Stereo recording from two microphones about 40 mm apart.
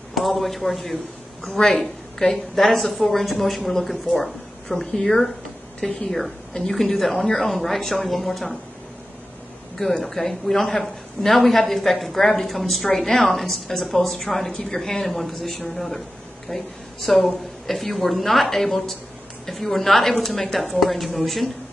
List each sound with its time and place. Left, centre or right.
0.1 s speech: centre
9.8 s speech: centre